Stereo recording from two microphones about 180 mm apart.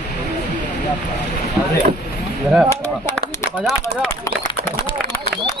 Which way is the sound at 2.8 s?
10° left (ahead or behind).